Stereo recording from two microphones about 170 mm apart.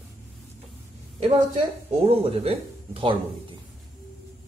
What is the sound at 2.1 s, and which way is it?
Speech, 35° right (ahead or behind).